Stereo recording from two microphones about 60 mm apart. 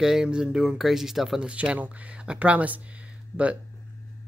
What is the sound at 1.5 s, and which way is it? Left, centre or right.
Speech, right.